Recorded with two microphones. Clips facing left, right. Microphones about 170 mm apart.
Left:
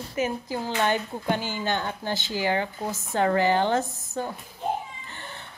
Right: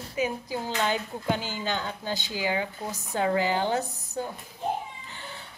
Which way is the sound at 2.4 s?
15° right (ahead or behind).